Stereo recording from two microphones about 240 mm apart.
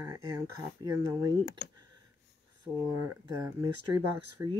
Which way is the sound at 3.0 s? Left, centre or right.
Centre.